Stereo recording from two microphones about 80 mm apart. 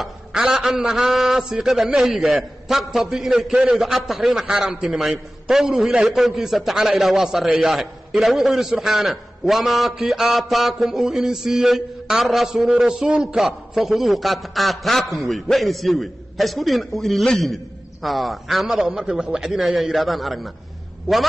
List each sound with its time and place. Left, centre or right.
0.0 s a man's voice: centre